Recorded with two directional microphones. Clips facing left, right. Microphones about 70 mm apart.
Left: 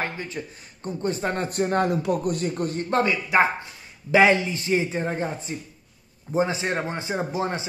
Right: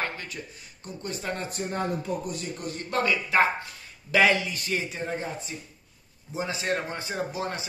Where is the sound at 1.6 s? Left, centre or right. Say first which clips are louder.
Left 9 dB; left.